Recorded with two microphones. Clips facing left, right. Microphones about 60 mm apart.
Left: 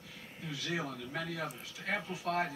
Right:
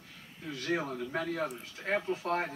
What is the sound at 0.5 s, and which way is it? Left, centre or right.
Speech, right.